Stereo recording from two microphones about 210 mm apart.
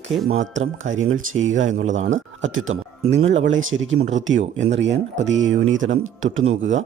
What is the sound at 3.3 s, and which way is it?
Speech, 65° right (ahead or behind).